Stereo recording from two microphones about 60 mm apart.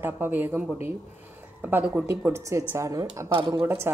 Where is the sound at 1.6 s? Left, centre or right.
Right.